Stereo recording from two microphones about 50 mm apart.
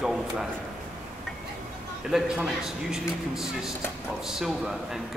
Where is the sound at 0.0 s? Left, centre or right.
Centre.